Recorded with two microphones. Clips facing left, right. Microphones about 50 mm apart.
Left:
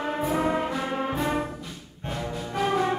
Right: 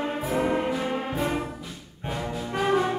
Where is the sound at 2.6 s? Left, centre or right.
Centre.